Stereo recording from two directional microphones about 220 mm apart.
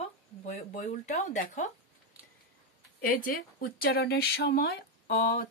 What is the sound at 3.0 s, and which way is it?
Speech, 40° left (ahead or behind).